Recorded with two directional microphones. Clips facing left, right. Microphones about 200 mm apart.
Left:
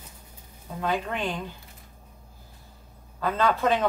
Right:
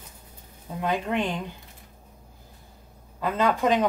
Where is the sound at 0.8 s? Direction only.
15° right (ahead or behind).